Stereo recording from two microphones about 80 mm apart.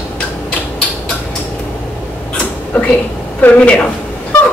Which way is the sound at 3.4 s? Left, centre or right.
Centre.